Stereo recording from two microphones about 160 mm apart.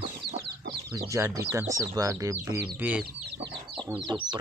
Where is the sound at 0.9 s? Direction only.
20° right (ahead or behind).